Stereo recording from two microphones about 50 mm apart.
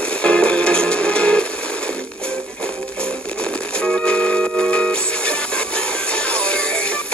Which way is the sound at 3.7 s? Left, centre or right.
Centre.